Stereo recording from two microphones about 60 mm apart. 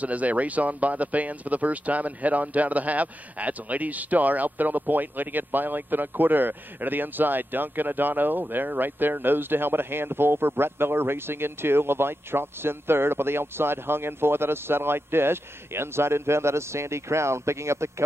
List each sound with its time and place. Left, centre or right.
0.0 s speech: right